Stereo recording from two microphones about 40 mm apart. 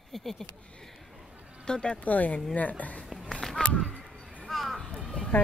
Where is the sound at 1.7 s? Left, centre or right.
Left.